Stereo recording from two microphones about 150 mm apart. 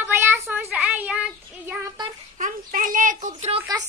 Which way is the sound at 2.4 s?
60° right (ahead or behind).